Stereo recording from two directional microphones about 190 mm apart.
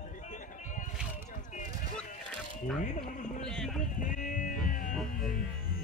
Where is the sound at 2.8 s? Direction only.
40° left (ahead or behind).